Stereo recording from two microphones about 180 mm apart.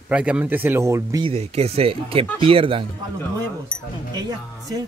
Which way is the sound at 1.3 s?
35° right (ahead or behind).